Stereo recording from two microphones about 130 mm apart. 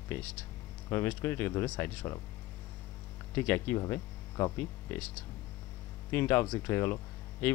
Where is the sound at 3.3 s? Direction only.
15° left (ahead or behind).